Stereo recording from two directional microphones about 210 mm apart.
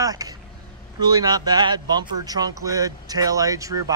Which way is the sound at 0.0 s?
15° right (ahead or behind).